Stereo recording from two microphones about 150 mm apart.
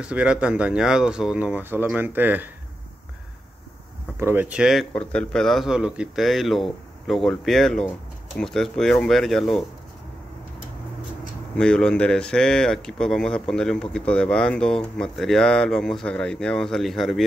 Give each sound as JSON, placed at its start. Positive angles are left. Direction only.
{"t": 0.0, "sound": "speech", "side_deg": -10}
{"t": 4.2, "sound": "speech", "side_deg": -15}
{"t": 4.9, "sound": "speech", "side_deg": 5}
{"t": 11.5, "sound": "speech", "side_deg": 5}